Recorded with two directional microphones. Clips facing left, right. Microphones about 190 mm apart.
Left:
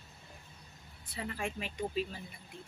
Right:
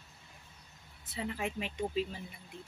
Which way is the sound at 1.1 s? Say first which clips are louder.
Right 2 dB; 20° right (ahead or behind).